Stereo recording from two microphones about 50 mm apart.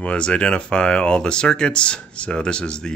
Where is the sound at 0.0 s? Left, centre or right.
Left.